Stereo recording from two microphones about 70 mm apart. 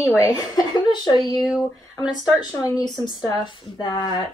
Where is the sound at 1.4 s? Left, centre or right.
Centre.